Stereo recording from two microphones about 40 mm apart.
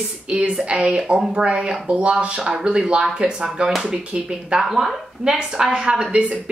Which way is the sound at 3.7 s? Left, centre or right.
Centre.